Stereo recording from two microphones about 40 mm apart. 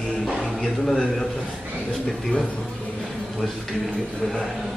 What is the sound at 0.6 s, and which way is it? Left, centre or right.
Speech, centre.